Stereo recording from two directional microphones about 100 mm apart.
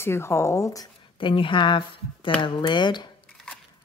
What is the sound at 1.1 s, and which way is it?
A woman's voice, 55° left (ahead or behind).